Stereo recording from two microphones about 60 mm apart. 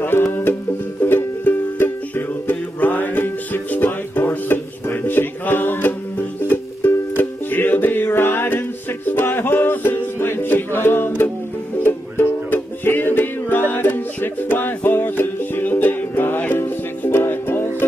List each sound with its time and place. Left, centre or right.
0.0 s music: left